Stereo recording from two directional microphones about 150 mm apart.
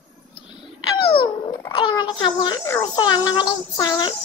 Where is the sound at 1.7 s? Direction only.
35° left (ahead or behind).